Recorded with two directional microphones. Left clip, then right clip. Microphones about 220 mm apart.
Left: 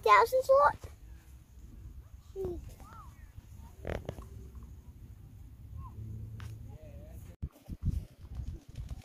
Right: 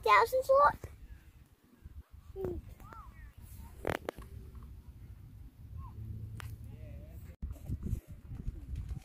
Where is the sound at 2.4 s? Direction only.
35° left (ahead or behind).